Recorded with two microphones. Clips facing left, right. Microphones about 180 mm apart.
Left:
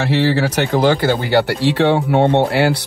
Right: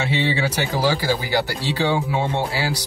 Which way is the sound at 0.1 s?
65° left (ahead or behind).